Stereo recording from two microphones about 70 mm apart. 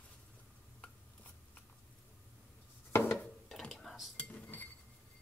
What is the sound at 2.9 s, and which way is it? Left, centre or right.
Dishes, left.